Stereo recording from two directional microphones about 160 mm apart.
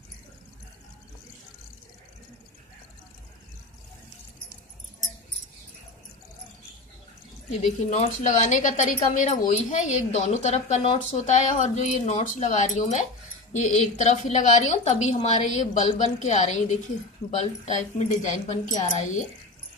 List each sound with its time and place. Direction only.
7.6 s a woman's voice: 50° left (ahead or behind)